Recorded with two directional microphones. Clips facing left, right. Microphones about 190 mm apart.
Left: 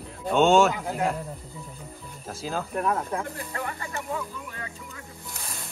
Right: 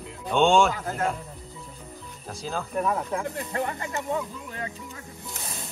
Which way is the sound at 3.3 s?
25° right (ahead or behind).